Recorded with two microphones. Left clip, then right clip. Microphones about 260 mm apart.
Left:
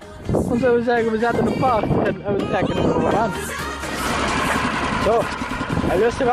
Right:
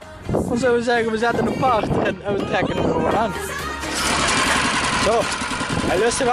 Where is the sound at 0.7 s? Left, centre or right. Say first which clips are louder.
Even; centre.